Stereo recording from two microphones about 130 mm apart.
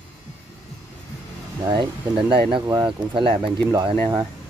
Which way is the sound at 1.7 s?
35° right (ahead or behind).